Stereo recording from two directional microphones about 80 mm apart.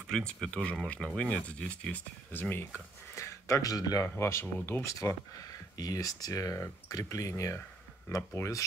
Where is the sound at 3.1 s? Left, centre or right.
Left.